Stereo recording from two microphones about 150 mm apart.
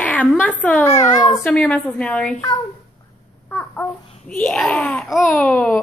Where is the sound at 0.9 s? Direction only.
25° left (ahead or behind).